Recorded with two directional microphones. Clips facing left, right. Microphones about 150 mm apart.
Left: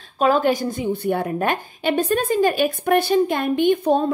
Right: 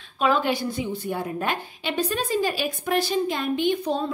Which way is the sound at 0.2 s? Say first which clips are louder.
Left 5 dB; 45° left (ahead or behind).